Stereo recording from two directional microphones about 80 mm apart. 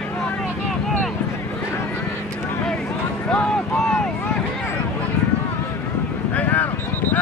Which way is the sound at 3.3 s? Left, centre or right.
Centre.